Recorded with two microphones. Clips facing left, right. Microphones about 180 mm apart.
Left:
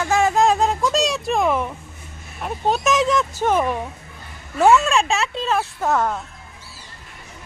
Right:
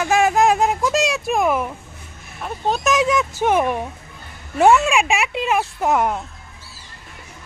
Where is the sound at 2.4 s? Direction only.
5° left (ahead or behind); by 6.2 s 15° right (ahead or behind).